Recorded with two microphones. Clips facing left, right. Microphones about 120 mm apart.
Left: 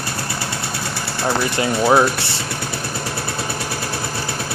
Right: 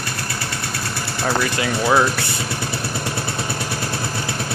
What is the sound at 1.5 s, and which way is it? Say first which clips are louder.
Speech: left 4 dB; 25° left (ahead or behind).